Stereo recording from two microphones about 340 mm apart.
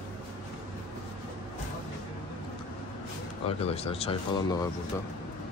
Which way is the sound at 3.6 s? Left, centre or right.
Centre.